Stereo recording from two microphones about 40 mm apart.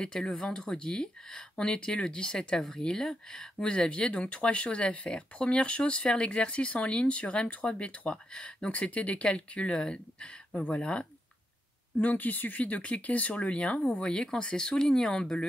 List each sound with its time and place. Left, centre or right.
0.0 s speech: centre
3.5 s speech: left
12.0 s speech: left
14.0 s speech: centre